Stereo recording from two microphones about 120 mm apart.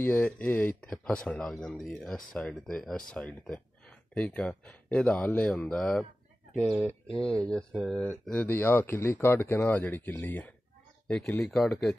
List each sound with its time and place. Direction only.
0.0 s speech: 10° left (ahead or behind)
6.6 s speech: 10° right (ahead or behind)
7.1 s speech: 5° left (ahead or behind)